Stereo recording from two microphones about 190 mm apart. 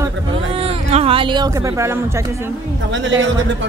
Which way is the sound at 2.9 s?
80° right.